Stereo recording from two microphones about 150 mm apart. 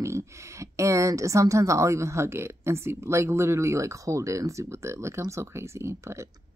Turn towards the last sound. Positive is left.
turn(degrees=-20)  # may be behind; listen again after turning